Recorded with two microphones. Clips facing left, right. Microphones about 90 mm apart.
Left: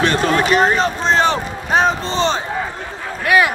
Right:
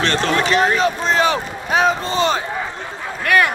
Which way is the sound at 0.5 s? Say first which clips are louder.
Left 1 dB; 35° left (ahead or behind).